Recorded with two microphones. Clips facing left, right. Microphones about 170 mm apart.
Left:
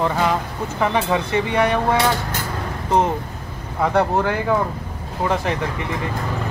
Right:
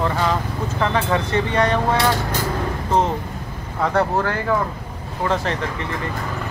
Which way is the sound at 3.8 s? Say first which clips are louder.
Left 1 dB; 15° left (ahead or behind).